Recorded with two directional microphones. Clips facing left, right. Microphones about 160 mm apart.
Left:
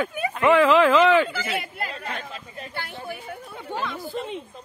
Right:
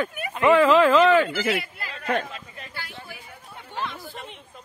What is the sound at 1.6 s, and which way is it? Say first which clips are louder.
Speech: left 2 dB; 45° left (ahead or behind).